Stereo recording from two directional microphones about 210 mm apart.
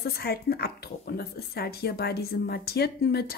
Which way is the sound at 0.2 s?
50° left (ahead or behind).